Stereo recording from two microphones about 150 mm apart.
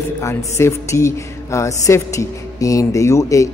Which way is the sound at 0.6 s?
20° left (ahead or behind).